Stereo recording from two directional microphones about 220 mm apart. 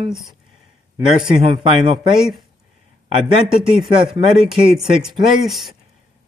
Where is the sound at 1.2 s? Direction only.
20° right (ahead or behind).